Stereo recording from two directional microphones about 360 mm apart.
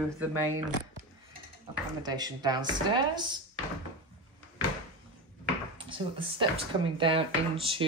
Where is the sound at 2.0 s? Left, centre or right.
Centre.